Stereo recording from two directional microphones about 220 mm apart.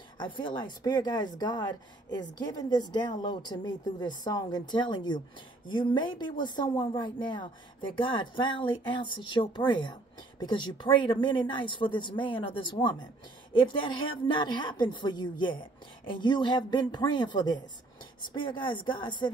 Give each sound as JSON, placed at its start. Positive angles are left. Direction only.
{"t": 0.2, "sound": "speech", "side_deg": 20}